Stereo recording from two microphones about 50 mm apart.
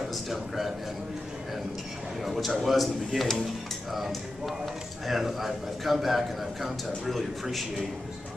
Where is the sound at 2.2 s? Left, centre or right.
Centre.